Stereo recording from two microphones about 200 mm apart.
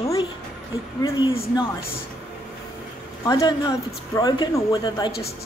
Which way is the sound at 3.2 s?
20° left (ahead or behind).